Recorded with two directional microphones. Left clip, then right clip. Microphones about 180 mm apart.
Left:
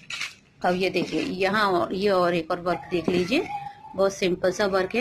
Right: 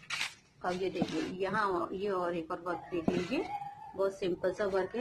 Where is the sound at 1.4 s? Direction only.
30° left (ahead or behind).